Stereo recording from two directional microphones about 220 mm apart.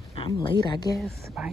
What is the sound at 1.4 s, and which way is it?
Speech, centre (ahead or behind).